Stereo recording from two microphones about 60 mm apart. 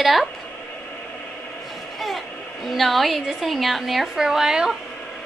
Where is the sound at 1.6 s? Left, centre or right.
Centre.